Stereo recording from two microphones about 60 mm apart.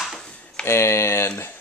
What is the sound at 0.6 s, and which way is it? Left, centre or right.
Speech, left.